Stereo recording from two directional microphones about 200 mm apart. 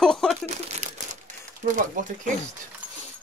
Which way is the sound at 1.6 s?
40° right (ahead or behind).